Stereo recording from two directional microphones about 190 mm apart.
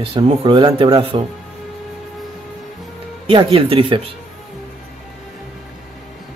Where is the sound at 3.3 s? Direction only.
30° right (ahead or behind).